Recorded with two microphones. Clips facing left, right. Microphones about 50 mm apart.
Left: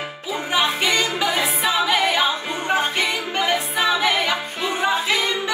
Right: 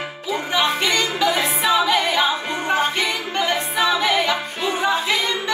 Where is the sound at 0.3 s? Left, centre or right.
Centre.